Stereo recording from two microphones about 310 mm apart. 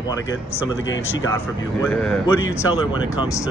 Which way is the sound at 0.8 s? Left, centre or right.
Left.